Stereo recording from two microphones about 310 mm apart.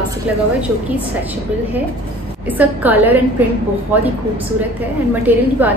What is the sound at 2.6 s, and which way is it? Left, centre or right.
Speech, centre.